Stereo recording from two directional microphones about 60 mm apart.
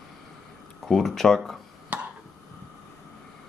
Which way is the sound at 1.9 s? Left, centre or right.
Right.